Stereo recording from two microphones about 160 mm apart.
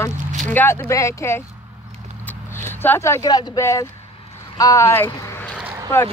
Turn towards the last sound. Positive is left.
turn(degrees=-10)  # may be behind; listen again after turning